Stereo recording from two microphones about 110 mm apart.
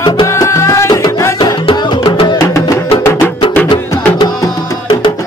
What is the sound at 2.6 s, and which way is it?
Music, 25° left (ahead or behind).